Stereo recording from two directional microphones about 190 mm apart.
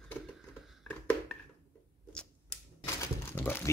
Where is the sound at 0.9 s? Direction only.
5° left (ahead or behind).